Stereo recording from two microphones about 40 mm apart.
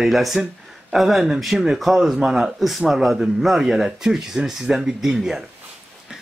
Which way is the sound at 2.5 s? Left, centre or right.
Centre.